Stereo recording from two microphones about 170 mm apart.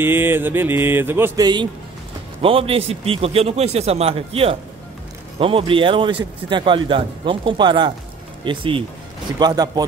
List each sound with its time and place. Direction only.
0.0 s mantra: 15° right (ahead or behind)
2.4 s a man's voice: 35° right (ahead or behind)